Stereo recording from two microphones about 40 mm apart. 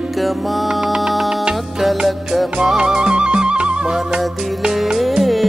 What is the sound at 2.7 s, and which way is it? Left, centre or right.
Music, right.